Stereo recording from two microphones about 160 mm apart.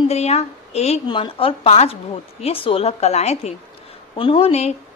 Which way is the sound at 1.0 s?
30° left (ahead or behind).